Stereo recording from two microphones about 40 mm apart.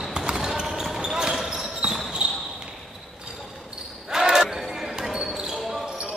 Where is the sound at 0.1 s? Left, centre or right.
Centre.